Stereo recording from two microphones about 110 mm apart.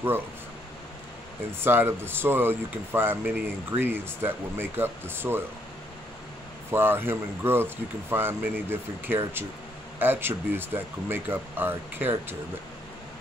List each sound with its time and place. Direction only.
1.6 s speech: 20° right (ahead or behind)
6.7 s speech: 20° right (ahead or behind)